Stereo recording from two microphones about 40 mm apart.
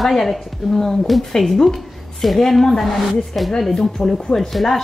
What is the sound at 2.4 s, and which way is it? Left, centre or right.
A woman's voice, centre.